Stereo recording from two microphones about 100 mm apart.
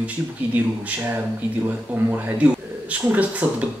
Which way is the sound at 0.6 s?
15° right (ahead or behind).